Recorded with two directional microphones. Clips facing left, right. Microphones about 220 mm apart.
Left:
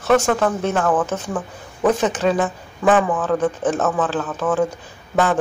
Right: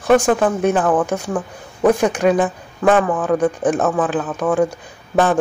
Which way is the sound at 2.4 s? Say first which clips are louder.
Right 2 dB; centre (ahead or behind).